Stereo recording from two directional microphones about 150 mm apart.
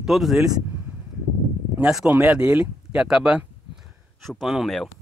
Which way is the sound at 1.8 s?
5° right (ahead or behind).